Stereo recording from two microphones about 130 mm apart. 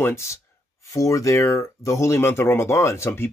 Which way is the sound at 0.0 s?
20° left (ahead or behind).